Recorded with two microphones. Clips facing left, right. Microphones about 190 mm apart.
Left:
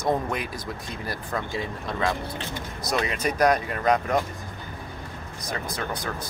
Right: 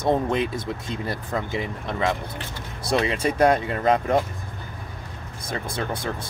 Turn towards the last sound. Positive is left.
turn(degrees=-25)  # may be behind; listen again after turning